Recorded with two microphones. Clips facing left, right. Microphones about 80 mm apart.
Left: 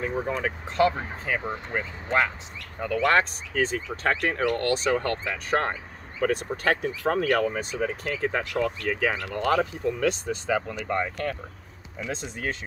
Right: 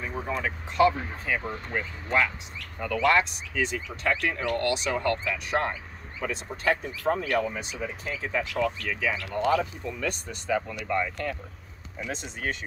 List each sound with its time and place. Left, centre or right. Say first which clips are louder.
0.3 s speech: left 2 dB; left
6.2 s speech: left 3 dB; left
7.3 s speech: left 3 dB; left
10.9 s speech: left 1 dB; left